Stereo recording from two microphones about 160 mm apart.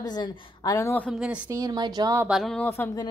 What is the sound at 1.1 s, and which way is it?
Speech, 5° right (ahead or behind).